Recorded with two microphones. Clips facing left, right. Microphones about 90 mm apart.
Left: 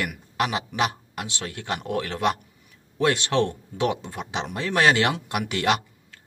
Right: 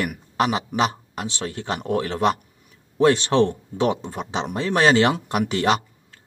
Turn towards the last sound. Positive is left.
turn(degrees=-30)  # may be behind; listen again after turning